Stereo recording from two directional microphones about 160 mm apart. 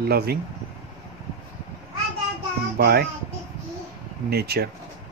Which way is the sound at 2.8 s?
75° right (ahead or behind).